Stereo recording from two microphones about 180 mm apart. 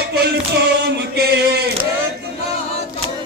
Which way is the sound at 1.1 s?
65° right (ahead or behind).